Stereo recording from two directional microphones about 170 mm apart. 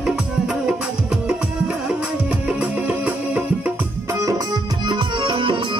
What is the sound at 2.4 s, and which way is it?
Music, 5° right (ahead or behind).